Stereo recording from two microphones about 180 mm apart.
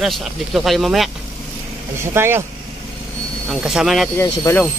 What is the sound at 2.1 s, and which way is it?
Speech, 15° right (ahead or behind).